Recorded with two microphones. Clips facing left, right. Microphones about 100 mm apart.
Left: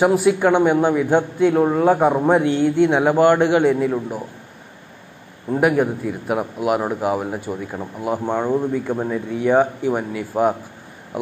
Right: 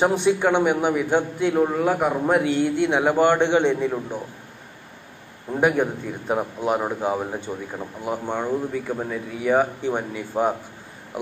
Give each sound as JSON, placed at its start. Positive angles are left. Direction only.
{"t": 0.0, "sound": "a man's voice", "side_deg": 5}
{"t": 2.6, "sound": "speech", "side_deg": -15}
{"t": 2.9, "sound": "a man's voice", "side_deg": 15}
{"t": 5.5, "sound": "a man's voice", "side_deg": 5}